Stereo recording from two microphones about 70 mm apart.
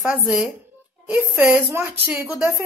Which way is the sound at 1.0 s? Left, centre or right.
Right.